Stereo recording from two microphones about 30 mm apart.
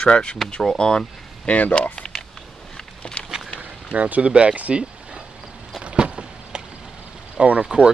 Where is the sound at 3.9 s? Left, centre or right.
Right.